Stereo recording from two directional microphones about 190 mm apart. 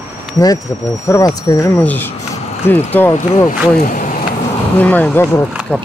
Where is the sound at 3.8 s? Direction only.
45° left (ahead or behind).